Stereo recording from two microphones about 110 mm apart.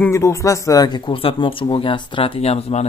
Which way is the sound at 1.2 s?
55° left (ahead or behind).